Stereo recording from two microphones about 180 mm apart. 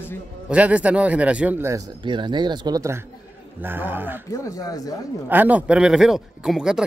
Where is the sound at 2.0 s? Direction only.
25° right (ahead or behind).